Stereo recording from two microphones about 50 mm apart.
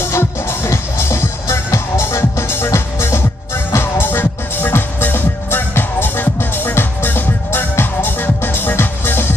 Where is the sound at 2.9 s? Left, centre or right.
Left.